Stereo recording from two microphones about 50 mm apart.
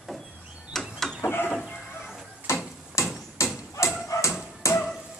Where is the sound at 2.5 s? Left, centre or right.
Left.